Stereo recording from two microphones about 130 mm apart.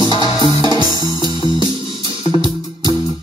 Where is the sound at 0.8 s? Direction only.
30° right (ahead or behind).